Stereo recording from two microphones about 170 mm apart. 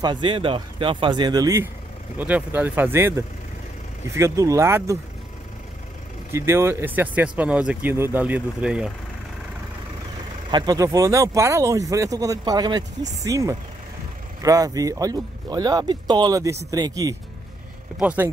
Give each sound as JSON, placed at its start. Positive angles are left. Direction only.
{"t": 0.0, "sound": "speech", "side_deg": -30}
{"t": 2.1, "sound": "speech", "side_deg": -10}
{"t": 6.3, "sound": "speech", "side_deg": -15}
{"t": 10.5, "sound": "speech", "side_deg": -25}
{"t": 17.9, "sound": "speech", "side_deg": -10}